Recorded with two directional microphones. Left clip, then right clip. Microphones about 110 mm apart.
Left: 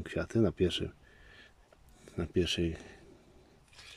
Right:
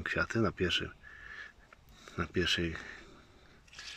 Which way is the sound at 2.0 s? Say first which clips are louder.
Even; 25° left (ahead or behind).